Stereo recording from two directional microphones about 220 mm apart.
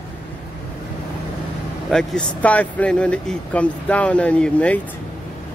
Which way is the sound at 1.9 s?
5° left (ahead or behind).